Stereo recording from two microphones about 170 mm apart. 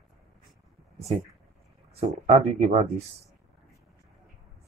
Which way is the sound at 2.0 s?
40° right (ahead or behind).